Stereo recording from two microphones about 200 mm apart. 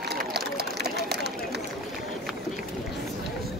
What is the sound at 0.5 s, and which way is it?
Run, 55° right (ahead or behind).